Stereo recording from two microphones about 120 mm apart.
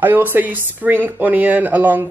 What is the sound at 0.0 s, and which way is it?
Speech, 15° right (ahead or behind).